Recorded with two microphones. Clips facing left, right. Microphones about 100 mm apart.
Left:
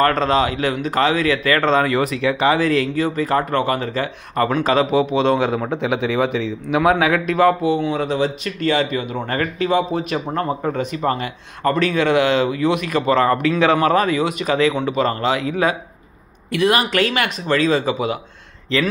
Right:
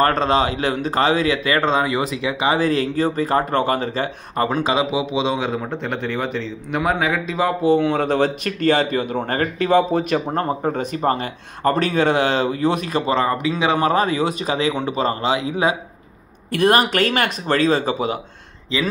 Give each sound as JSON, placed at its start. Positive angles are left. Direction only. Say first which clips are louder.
{"t": 0.0, "sound": "speech", "louder": "left 1 dB", "side_deg": -25}
{"t": 2.6, "sound": "speech", "louder": "left 1 dB", "side_deg": -30}
{"t": 4.6, "sound": "a man's voice", "louder": "left 4 dB", "side_deg": -15}
{"t": 5.5, "sound": "speech", "louder": "left 4 dB", "side_deg": 5}
{"t": 7.8, "sound": "speech", "louder": "right 2 dB", "side_deg": -55}
{"t": 13.7, "sound": "speech", "louder": "left 1 dB", "side_deg": -25}
{"t": 16.5, "sound": "speech", "louder": "right 1 dB", "side_deg": -45}